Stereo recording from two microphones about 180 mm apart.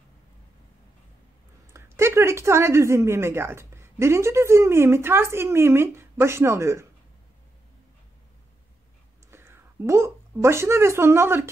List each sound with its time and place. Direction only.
1.7 s speech: 15° right (ahead or behind)
9.3 s a woman's voice: 15° right (ahead or behind)